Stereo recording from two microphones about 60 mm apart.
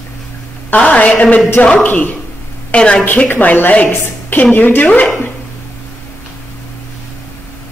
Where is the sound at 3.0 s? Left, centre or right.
Left.